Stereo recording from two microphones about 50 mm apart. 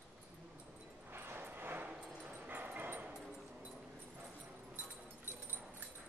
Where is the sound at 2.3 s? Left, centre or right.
Right.